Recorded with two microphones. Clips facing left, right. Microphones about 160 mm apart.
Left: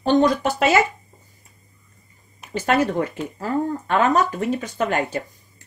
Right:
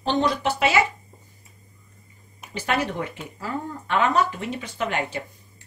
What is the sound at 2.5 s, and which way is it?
Speech, 45° left (ahead or behind).